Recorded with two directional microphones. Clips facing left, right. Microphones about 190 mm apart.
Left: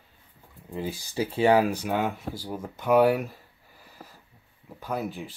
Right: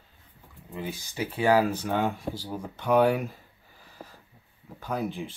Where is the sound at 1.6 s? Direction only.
10° left (ahead or behind).